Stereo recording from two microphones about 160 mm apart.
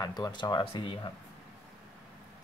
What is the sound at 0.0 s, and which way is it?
Speech, 25° left (ahead or behind).